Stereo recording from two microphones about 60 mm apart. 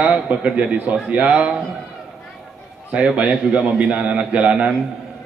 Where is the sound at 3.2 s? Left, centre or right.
Centre.